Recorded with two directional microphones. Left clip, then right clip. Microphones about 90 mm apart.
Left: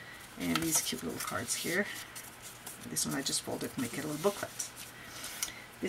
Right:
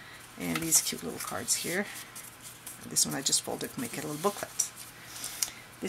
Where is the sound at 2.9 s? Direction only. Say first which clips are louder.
Right 5 dB; 25° right (ahead or behind).